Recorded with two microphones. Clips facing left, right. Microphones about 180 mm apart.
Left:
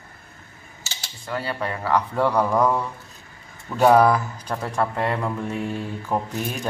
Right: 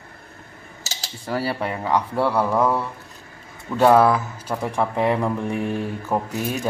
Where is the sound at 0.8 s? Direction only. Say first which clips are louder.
Right 4 dB; 40° right (ahead or behind).